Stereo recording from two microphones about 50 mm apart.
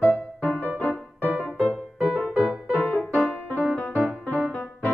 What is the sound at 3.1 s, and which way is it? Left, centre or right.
Music, left.